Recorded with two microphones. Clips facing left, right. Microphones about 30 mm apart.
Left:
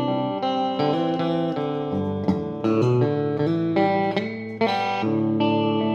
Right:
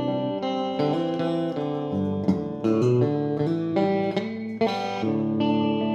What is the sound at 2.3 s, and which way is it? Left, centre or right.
Music, left.